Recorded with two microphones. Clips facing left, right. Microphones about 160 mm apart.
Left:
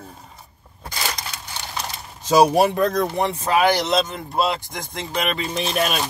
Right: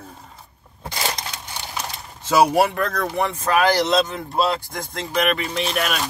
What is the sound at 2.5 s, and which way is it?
Speech, 20° left (ahead or behind).